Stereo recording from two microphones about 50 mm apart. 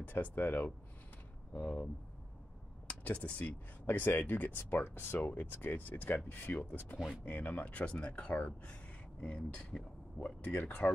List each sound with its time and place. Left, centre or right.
0.0 s speech: left
1.5 s speech: left
2.9 s speech: left